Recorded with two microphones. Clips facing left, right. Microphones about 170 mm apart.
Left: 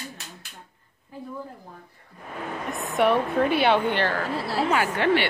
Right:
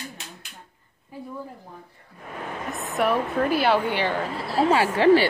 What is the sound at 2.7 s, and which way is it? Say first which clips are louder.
Speech: left 2 dB; centre (ahead or behind).